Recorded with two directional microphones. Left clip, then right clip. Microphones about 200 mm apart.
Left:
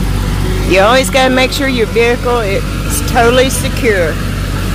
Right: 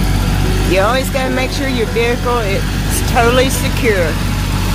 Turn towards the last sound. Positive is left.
turn(degrees=5)  # may be behind; listen again after turning